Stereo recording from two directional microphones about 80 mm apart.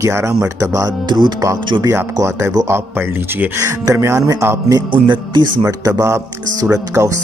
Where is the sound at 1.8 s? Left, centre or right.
Right.